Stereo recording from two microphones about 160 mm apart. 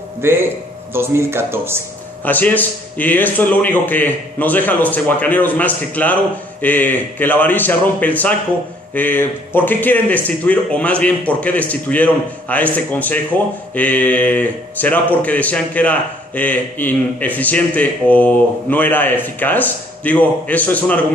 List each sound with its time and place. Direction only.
0.2 s speech: 15° right (ahead or behind)
2.2 s speech: 10° left (ahead or behind)